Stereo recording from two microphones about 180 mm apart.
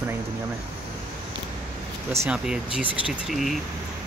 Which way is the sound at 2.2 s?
5° right (ahead or behind).